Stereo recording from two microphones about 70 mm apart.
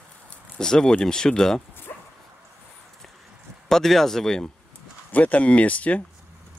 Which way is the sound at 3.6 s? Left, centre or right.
Centre.